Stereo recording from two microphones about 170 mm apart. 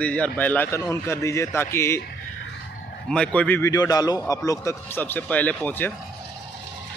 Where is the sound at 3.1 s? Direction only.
5° left (ahead or behind).